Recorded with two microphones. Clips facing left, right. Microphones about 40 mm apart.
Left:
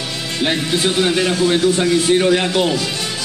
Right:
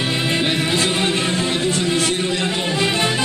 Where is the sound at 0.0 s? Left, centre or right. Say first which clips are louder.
Right 3 dB; right.